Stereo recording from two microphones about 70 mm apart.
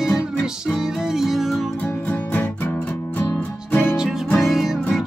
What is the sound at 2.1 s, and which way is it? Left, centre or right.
Music, left.